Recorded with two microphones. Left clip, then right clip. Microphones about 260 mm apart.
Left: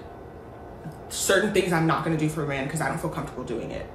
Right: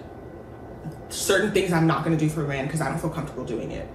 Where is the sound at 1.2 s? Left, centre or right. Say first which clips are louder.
Even; centre.